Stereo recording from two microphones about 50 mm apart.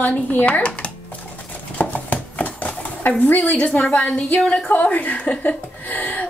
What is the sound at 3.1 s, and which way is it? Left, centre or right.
A woman's voice, left.